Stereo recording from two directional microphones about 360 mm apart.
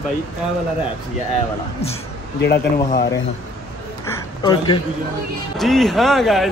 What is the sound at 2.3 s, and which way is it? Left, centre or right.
Speech, left.